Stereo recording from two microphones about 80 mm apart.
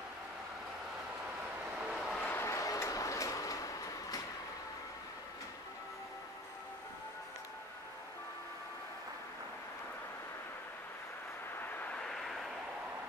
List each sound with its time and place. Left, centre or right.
1.9 s vehicle: centre
2.1 s vehicle: centre
2.4 s train: left
11.6 s vehicle: left
12.0 s vehicle: centre